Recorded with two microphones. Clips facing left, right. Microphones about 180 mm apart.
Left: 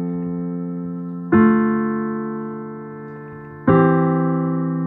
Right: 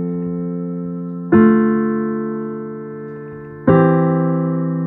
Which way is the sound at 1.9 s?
45° right (ahead or behind).